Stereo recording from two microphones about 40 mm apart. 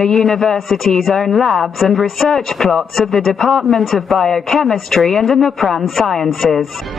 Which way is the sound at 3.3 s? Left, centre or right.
Centre.